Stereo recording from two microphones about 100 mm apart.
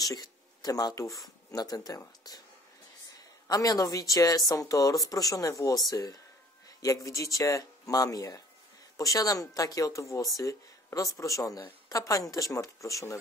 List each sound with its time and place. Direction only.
0.0 s speech: 40° left (ahead or behind)
3.4 s speech: 40° left (ahead or behind)